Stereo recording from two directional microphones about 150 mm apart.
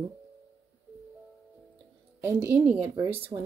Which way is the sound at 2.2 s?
15° right (ahead or behind).